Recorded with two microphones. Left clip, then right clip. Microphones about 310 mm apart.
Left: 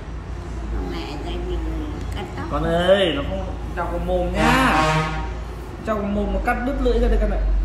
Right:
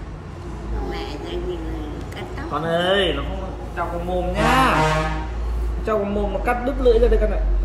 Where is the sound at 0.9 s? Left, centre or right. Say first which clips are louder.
Right 2 dB; centre.